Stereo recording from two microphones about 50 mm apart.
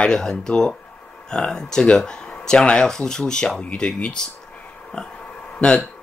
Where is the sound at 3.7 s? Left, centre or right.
Left.